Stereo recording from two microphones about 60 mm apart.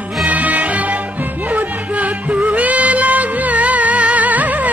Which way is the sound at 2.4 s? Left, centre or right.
Right.